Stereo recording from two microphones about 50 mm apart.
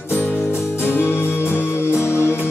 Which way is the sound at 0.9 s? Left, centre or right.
Left.